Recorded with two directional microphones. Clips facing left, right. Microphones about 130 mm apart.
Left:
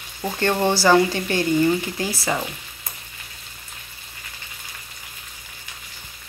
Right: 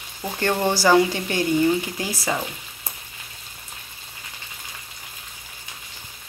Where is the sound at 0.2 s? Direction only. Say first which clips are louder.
Left 2 dB; 5° right (ahead or behind).